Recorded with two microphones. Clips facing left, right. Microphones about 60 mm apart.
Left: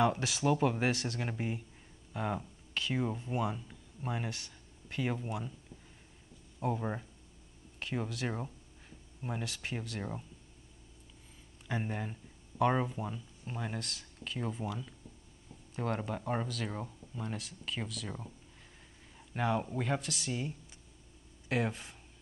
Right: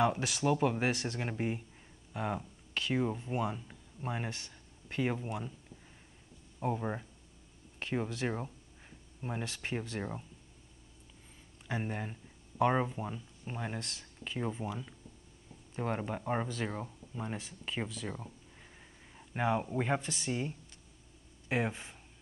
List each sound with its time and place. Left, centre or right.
0.0 s speech: centre
6.6 s speech: centre
11.6 s speech: centre
19.1 s speech: centre